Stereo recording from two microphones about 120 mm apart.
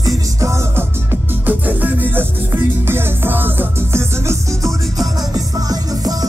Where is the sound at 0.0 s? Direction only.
25° right (ahead or behind).